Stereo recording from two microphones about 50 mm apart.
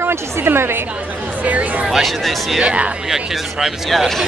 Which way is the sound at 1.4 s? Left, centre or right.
Right.